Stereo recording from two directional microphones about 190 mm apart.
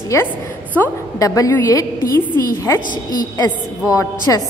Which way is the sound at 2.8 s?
45° left (ahead or behind).